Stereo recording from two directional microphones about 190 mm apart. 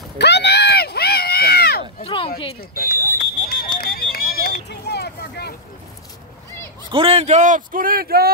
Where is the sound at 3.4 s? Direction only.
50° left (ahead or behind).